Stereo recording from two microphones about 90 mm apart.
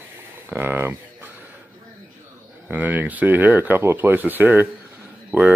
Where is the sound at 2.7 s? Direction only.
15° right (ahead or behind).